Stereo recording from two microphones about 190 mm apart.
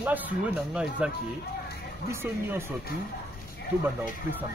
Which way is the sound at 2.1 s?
10° right (ahead or behind).